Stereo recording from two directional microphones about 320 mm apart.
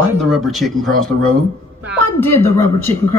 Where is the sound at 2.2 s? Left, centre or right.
Centre.